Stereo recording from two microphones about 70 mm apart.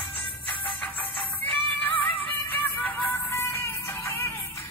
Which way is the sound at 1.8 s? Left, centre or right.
Left.